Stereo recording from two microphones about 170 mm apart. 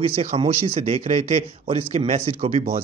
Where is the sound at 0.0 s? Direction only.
35° right (ahead or behind).